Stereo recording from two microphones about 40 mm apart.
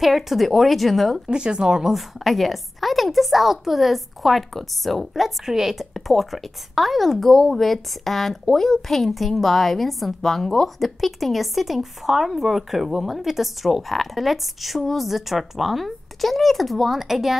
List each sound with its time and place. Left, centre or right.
0.0 s speech: centre
1.2 s speech: right
2.0 s speech: centre
5.4 s speech: centre